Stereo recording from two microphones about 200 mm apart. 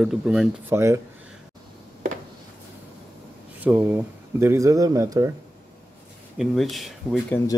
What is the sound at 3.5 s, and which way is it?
Speech, 10° right (ahead or behind).